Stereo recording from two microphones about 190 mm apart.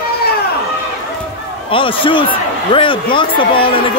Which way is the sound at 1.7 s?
25° left (ahead or behind).